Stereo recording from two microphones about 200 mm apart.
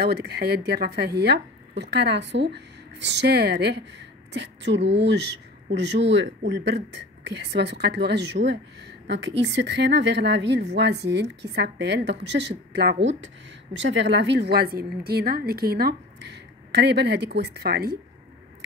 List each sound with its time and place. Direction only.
0.0 s a woman's voice: 50° right (ahead or behind)